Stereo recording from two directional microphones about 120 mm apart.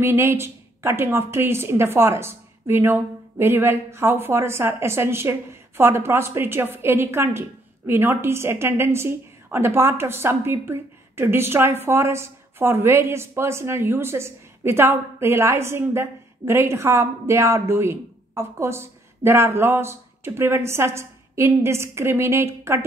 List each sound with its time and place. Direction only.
0.0 s speech: 20° right (ahead or behind)